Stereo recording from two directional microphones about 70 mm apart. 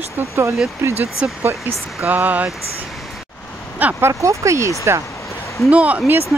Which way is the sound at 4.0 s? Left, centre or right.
Right.